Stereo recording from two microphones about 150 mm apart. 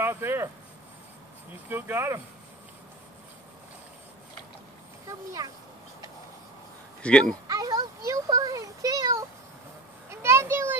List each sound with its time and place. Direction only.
0.0 s speech: 15° right (ahead or behind)
1.7 s speech: 15° right (ahead or behind)
5.0 s speech: 20° right (ahead or behind)
7.0 s speech: 5° left (ahead or behind)
7.4 s a sound: 25° right (ahead or behind)